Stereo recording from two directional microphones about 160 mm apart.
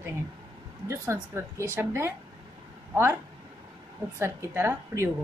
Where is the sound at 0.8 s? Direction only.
20° right (ahead or behind).